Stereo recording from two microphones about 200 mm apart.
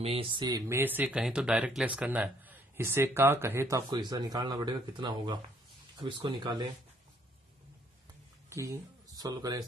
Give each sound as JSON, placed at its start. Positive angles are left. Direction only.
{"t": 0.0, "sound": "speech", "side_deg": -30}
{"t": 8.5, "sound": "speech", "side_deg": -15}